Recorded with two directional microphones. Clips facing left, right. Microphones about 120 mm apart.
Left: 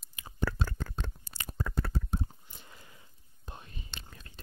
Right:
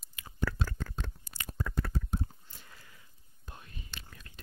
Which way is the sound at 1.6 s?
30° left (ahead or behind).